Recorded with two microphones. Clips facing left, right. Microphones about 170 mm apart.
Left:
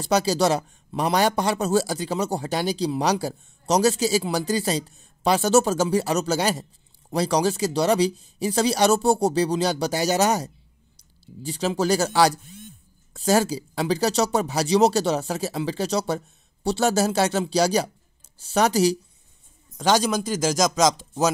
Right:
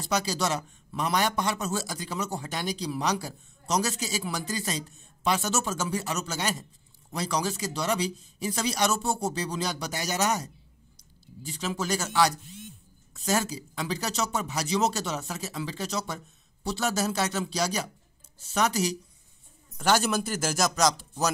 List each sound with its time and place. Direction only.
0.0 s speech: 30° left (ahead or behind)
20.2 s a man's voice: 15° left (ahead or behind)